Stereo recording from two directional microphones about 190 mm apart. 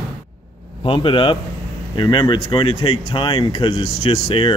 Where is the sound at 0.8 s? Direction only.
25° left (ahead or behind).